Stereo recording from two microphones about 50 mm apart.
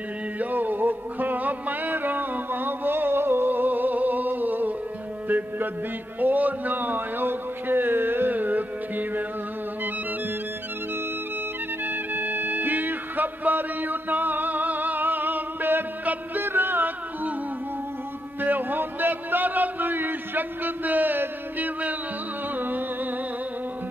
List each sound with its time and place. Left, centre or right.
0.4 s music: right
6.1 s a man's voice: right
11.8 s music: right
18.4 s a sound: right
22.6 s music: right